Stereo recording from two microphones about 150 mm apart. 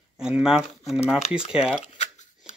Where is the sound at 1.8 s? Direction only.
45° left (ahead or behind).